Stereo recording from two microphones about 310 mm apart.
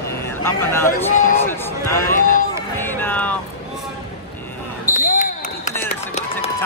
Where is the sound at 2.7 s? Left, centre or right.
Centre.